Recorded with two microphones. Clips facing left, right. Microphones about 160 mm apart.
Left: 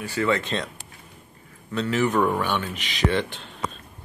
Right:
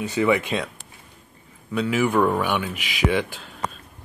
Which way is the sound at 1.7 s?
10° right (ahead or behind).